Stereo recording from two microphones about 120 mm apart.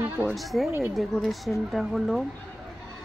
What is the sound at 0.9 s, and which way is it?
Speech, centre (ahead or behind).